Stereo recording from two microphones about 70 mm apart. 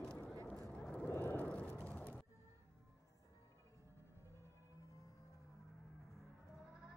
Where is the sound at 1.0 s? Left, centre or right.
Left.